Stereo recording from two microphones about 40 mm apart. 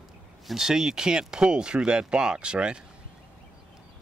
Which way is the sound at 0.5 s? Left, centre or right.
Centre.